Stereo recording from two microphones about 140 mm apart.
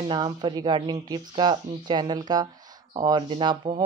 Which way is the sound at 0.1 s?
35° right (ahead or behind).